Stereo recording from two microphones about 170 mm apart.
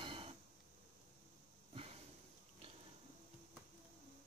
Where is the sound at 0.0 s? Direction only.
30° right (ahead or behind).